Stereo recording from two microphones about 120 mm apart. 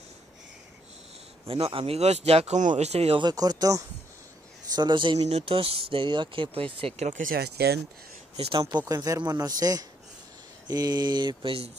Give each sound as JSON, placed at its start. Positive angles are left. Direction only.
{"t": 1.5, "sound": "speech", "side_deg": -50}
{"t": 3.2, "sound": "speech", "side_deg": -35}
{"t": 5.2, "sound": "speech", "side_deg": -60}
{"t": 7.0, "sound": "speech", "side_deg": -90}
{"t": 8.4, "sound": "speech", "side_deg": -45}
{"t": 8.8, "sound": "speech", "side_deg": -30}